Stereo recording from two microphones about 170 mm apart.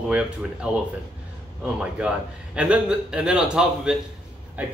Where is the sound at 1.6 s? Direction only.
5° right (ahead or behind).